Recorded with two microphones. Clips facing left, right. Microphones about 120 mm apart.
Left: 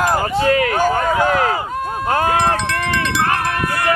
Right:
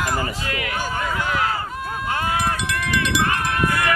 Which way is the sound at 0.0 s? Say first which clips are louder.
Left 9 dB; 40° left (ahead or behind).